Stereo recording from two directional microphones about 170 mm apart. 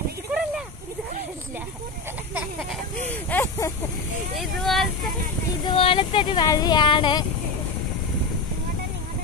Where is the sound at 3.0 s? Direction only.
15° left (ahead or behind).